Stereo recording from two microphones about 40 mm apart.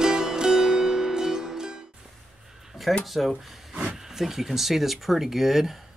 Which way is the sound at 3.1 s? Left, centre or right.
Centre.